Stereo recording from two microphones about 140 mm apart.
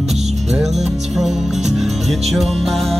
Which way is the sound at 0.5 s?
Centre (ahead or behind).